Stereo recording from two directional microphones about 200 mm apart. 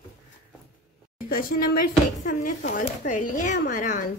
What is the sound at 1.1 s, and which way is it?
A woman's voice, 45° left (ahead or behind).